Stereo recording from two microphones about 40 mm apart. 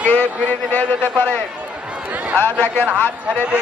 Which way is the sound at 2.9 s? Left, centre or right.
Left.